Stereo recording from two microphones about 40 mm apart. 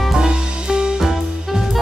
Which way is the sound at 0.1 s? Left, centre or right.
Centre.